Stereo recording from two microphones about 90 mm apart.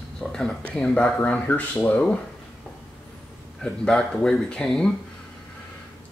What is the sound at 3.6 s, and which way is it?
Speech, 10° left (ahead or behind).